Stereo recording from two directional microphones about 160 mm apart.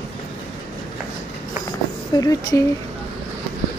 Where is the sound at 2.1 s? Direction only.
20° left (ahead or behind).